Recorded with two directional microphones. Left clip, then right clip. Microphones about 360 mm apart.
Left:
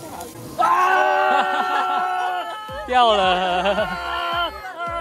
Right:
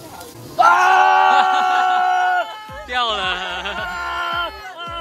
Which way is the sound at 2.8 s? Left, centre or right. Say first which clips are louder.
Left 4 dB; centre.